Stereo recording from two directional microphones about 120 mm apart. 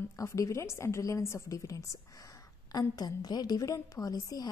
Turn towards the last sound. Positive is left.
turn(degrees=30)  # may be behind; listen again after turning